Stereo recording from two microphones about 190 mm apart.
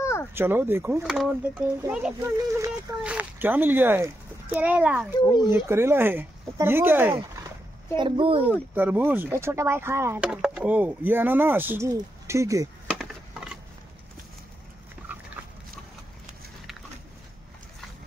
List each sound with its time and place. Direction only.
0.0 s a sound: 15° left (ahead or behind)
0.3 s a child's voice: 10° right (ahead or behind)
2.2 s speech: 15° right (ahead or behind)
7.9 s speech: 25° right (ahead or behind)
8.5 s speech: 10° right (ahead or behind)
12.9 s a sound: 5° right (ahead or behind)
15.1 s dog: 10° right (ahead or behind)